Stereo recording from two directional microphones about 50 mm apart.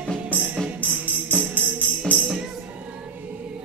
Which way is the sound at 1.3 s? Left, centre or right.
Left.